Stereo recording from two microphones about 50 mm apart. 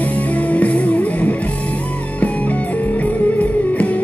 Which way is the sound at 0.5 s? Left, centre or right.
Left.